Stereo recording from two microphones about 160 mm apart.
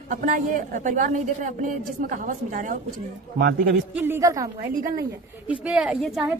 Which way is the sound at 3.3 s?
90° right.